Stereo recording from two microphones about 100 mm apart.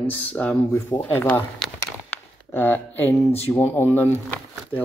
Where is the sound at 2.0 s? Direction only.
20° left (ahead or behind).